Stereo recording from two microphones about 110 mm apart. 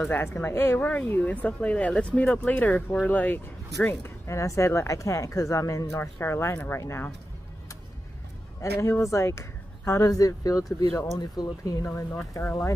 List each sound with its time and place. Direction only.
0.0 s speech: 20° left (ahead or behind)
8.5 s speech: 25° left (ahead or behind)